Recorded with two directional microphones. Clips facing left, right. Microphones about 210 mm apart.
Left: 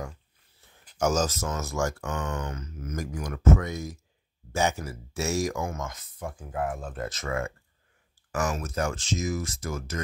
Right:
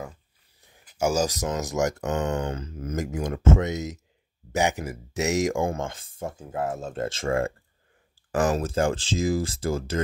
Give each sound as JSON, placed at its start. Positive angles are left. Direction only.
{"t": 0.6, "sound": "speech", "side_deg": -10}